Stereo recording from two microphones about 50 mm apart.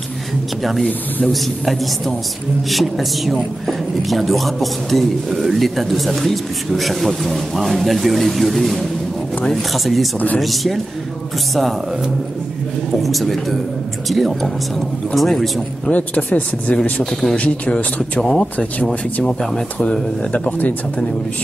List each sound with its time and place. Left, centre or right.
1.2 s speech: centre
13.0 s speech: centre
15.9 s speech: left
17.0 s speech: centre
17.4 s speech: left